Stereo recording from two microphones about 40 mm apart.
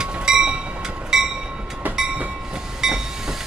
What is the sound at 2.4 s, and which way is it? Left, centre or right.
Train, centre.